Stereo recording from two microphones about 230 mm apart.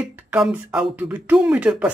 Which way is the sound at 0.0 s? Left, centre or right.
Centre.